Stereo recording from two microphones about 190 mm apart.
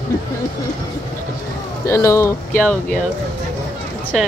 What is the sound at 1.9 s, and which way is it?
Speech, 15° left (ahead or behind).